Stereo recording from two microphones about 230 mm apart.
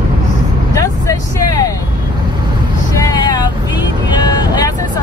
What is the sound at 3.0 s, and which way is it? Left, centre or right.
Vehicle, centre.